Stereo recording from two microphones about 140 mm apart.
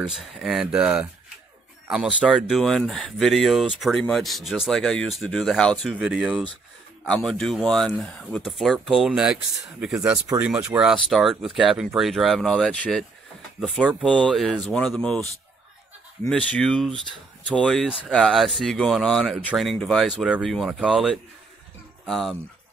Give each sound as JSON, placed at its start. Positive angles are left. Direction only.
{"t": 0.0, "sound": "speech", "side_deg": 0}
{"t": 10.1, "sound": "speech", "side_deg": -25}
{"t": 10.4, "sound": "speech", "side_deg": -5}
{"t": 13.6, "sound": "speech", "side_deg": -5}
{"t": 16.3, "sound": "speech", "side_deg": 5}